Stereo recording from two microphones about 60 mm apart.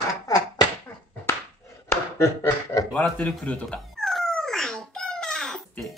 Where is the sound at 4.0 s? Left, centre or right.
Centre.